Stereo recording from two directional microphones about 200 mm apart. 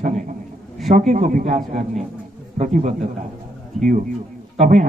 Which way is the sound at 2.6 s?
35° right (ahead or behind).